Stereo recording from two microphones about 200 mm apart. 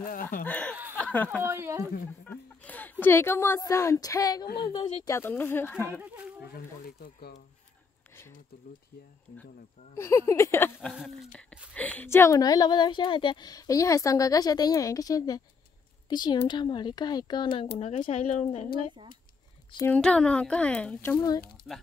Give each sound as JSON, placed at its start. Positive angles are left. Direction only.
{"t": 0.0, "sound": "speech", "side_deg": 45}
{"t": 0.5, "sound": "speech", "side_deg": 5}
{"t": 0.9, "sound": "a sound", "side_deg": 5}
{"t": 1.4, "sound": "speech", "side_deg": -10}
{"t": 2.2, "sound": "speech", "side_deg": 10}
{"t": 5.1, "sound": "speech", "side_deg": 10}
{"t": 5.9, "sound": "speech", "side_deg": -10}
{"t": 6.5, "sound": "speech", "side_deg": 50}
{"t": 9.3, "sound": "speech", "side_deg": 40}
{"t": 9.9, "sound": "speech", "side_deg": 15}
{"t": 10.9, "sound": "speech", "side_deg": 0}
{"t": 19.9, "sound": "speech", "side_deg": 5}
{"t": 21.7, "sound": "speech", "side_deg": 0}